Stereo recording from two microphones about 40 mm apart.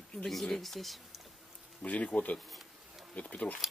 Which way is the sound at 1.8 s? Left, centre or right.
Left.